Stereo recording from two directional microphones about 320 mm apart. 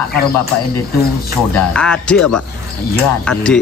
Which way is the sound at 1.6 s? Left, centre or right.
Centre.